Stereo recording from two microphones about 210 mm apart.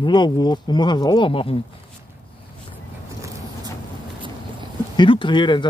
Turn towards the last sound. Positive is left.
turn(degrees=20)  # may be behind; listen again after turning